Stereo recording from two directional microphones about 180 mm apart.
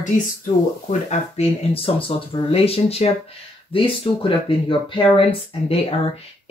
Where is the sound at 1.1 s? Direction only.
35° left (ahead or behind).